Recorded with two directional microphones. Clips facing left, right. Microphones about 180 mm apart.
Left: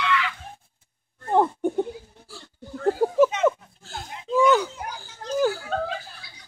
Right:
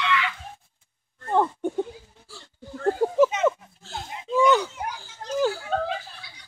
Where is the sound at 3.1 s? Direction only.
Centre (ahead or behind).